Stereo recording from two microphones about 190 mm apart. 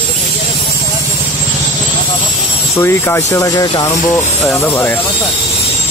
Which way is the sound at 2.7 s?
15° left (ahead or behind).